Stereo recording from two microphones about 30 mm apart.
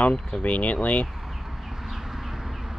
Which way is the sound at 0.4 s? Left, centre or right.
Left.